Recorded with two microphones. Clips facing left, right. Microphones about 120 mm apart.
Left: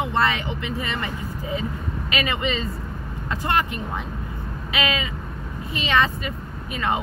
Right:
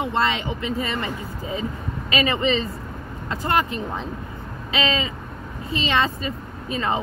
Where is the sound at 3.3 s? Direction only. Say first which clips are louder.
Right 1 dB; 25° right (ahead or behind).